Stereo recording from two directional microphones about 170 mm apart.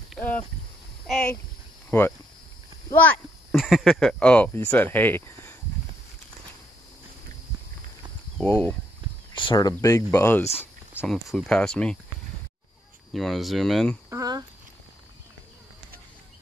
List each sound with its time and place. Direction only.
0.2 s speech: centre (ahead or behind)
1.9 s speech: 15° left (ahead or behind)
3.5 s speech: centre (ahead or behind); by 5.6 s 15° left (ahead or behind)
8.5 s speech: 10° left (ahead or behind)
9.3 s speech: 30° left (ahead or behind); by 10.5 s 15° left (ahead or behind)
11.1 s speech: centre (ahead or behind)
13.1 s speech: centre (ahead or behind)
14.1 s speech: 20° right (ahead or behind)